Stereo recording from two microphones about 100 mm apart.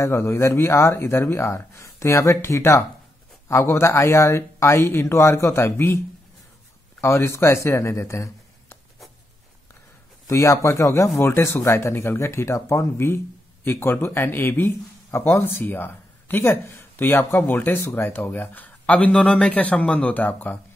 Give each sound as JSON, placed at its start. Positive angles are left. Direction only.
{"t": 0.0, "sound": "speech", "side_deg": 25}
{"t": 7.0, "sound": "speech", "side_deg": 25}
{"t": 10.2, "sound": "speech", "side_deg": 30}